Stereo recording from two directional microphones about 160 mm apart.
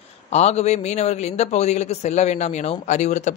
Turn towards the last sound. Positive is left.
turn(degrees=45)  # may be behind; listen again after turning